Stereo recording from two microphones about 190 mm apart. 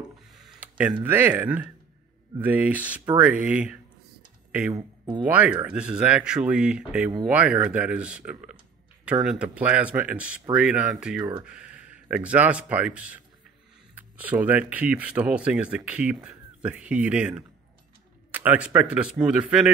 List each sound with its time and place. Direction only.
0.3 s a sound: centre (ahead or behind)
1.0 s speech: 10° right (ahead or behind)
4.7 s speech: 25° right (ahead or behind)
5.2 s speech: 5° right (ahead or behind)